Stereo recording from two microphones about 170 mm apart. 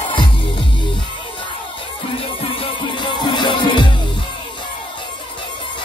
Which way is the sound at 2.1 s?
30° left (ahead or behind).